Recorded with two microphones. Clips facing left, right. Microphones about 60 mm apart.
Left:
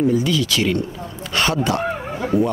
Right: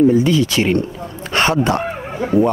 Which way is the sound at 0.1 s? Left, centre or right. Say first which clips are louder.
Right 5 dB; right.